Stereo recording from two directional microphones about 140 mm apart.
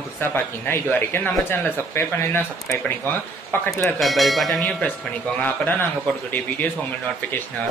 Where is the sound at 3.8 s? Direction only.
Centre (ahead or behind).